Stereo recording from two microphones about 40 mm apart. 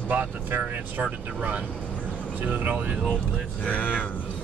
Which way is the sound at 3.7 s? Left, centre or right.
Left.